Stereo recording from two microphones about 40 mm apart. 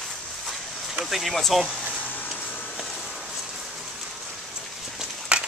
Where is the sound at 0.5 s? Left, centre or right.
Centre.